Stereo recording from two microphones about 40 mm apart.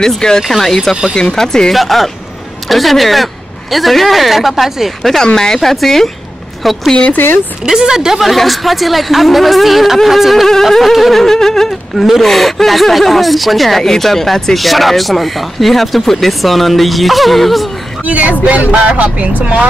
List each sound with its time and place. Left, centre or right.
0.4 s speech: centre
1.7 s speech: centre
5.2 s speech: centre
5.6 s speech: centre
7.6 s speech: centre
8.2 s speech: centre
18.0 s speech: right